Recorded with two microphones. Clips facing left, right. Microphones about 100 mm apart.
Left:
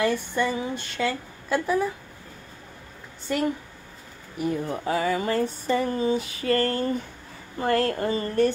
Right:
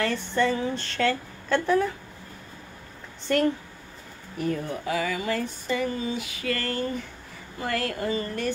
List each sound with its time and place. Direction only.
0.0 s speech: 15° left (ahead or behind)
3.3 s speech: 5° left (ahead or behind)
4.6 s a sound: 35° left (ahead or behind)